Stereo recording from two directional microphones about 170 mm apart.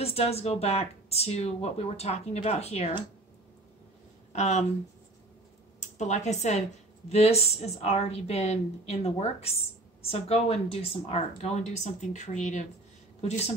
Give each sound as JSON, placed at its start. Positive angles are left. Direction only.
{"t": 0.0, "sound": "a woman's voice", "side_deg": 35}
{"t": 4.3, "sound": "speech", "side_deg": 40}
{"t": 5.8, "sound": "a woman's voice", "side_deg": 45}